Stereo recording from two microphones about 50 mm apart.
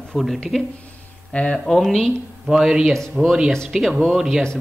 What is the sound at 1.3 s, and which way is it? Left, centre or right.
Speech, left.